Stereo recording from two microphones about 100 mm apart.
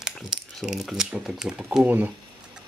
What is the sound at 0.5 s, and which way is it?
Speech, centre (ahead or behind).